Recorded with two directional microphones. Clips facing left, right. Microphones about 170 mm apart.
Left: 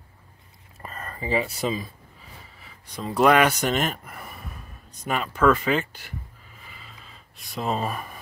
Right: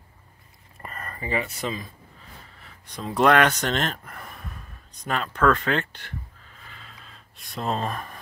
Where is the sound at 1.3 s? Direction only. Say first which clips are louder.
Left 3 dB; 25° left (ahead or behind).